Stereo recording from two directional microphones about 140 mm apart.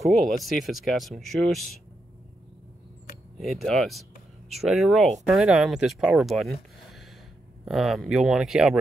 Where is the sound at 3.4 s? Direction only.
Centre (ahead or behind).